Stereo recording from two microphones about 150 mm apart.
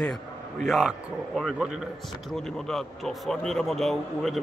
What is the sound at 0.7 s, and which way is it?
A man's voice, centre (ahead or behind).